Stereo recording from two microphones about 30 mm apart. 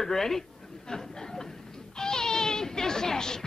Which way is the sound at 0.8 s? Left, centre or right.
Left.